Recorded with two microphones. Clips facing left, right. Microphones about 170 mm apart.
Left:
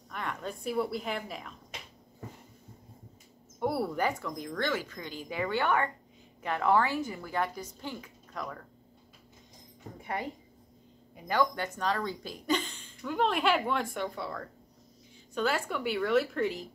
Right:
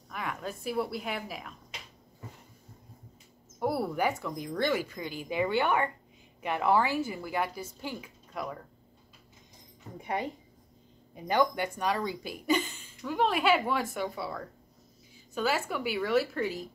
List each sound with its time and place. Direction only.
0.1 s a woman's voice: 5° right (ahead or behind)
3.5 s a woman's voice: centre (ahead or behind)
9.9 s a sound: 20° right (ahead or behind)
11.2 s a woman's voice: 15° right (ahead or behind)